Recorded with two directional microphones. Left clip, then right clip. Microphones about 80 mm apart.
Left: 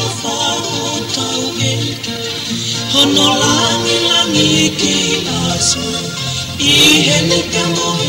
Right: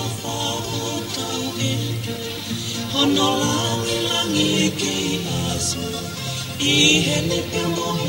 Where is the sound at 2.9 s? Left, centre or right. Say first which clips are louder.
Left 8 dB; centre.